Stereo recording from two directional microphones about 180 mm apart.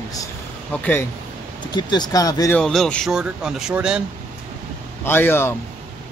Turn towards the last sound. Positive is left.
turn(degrees=15)  # may be behind; listen again after turning